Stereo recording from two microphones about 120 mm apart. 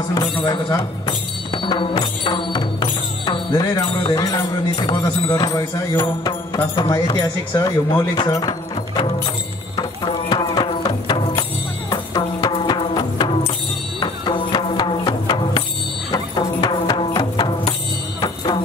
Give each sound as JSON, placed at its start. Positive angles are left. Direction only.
{"t": 0.5, "sound": "music", "side_deg": 40}
{"t": 4.1, "sound": "jingle bell", "side_deg": 30}
{"t": 5.4, "sound": "speech", "side_deg": 35}
{"t": 10.3, "sound": "music", "side_deg": 35}